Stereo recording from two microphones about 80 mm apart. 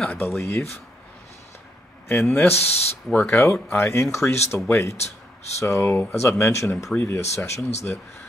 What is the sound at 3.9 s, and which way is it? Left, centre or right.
Speech, left.